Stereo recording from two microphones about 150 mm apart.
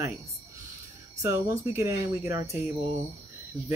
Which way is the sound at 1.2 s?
15° right (ahead or behind).